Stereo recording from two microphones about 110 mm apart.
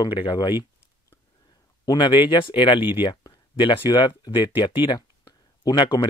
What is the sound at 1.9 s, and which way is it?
Speech, 45° left (ahead or behind).